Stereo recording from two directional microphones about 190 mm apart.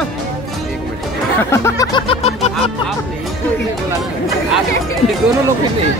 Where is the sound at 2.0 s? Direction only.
35° left (ahead or behind).